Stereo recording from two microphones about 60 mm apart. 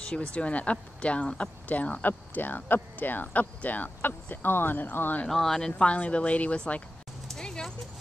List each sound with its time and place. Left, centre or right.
0.0 s speech: centre
5.3 s speech: centre
5.7 s speech: centre
7.2 s a sound: centre